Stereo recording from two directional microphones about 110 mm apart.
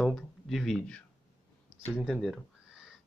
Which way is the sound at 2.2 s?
Centre (ahead or behind).